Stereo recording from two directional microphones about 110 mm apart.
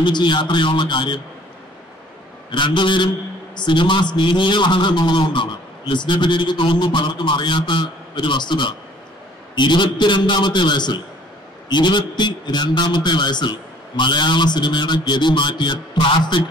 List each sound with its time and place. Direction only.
0.0 s a man's voice: 45° left (ahead or behind)
2.5 s a man's voice: 45° left (ahead or behind)